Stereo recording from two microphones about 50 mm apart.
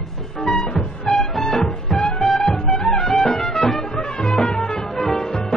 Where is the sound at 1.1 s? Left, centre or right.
Centre.